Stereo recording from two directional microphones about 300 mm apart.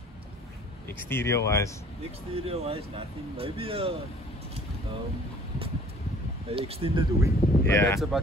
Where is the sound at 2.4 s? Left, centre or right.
Centre.